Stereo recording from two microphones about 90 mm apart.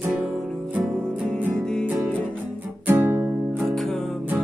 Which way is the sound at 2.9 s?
30° right (ahead or behind).